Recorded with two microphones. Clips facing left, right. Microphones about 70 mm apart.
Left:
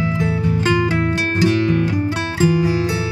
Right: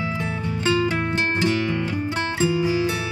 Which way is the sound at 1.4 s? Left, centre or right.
Centre.